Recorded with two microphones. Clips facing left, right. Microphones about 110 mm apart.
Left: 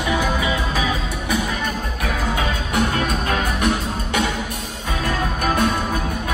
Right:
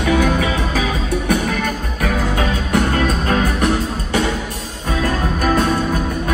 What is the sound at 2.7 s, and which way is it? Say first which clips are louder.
Music: right 3 dB; 45° right (ahead or behind).